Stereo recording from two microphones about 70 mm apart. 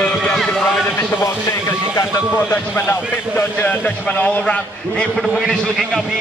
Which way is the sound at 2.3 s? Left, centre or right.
Left.